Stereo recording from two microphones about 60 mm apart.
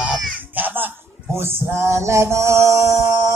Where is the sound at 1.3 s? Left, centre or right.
Right.